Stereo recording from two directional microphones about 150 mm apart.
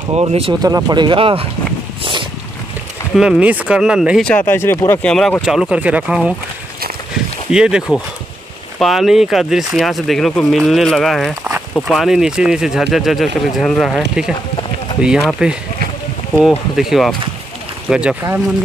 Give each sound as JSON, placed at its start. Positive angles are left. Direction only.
{"t": 0.1, "sound": "speech", "side_deg": -40}
{"t": 0.6, "sound": "speech", "side_deg": -25}
{"t": 3.2, "sound": "speech", "side_deg": -5}
{"t": 4.3, "sound": "speech", "side_deg": 10}
{"t": 5.1, "sound": "speech", "side_deg": 5}
{"t": 7.5, "sound": "speech", "side_deg": -5}
{"t": 16.4, "sound": "speech", "side_deg": 0}